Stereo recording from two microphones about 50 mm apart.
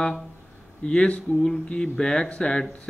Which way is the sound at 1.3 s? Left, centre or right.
Centre.